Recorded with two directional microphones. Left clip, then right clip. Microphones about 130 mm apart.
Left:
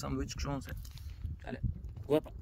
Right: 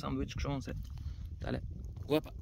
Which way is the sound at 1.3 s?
55° right (ahead or behind).